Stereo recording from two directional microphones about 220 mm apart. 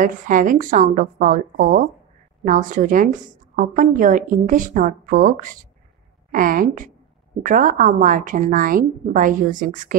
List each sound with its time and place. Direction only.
0.0 s a woman's voice: 40° right (ahead or behind)